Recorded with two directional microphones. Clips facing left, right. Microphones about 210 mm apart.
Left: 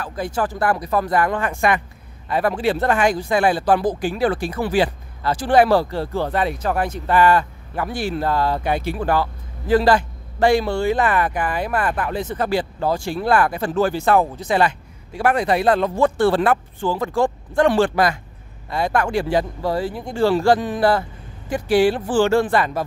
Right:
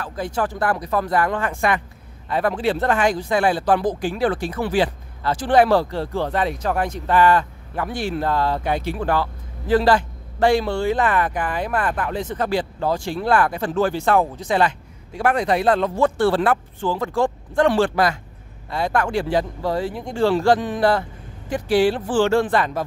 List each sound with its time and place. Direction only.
0.0 s speech: 10° left (ahead or behind)